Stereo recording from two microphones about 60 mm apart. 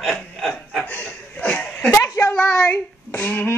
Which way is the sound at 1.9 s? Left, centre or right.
Left.